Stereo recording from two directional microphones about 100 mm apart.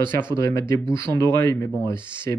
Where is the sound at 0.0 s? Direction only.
50° right (ahead or behind).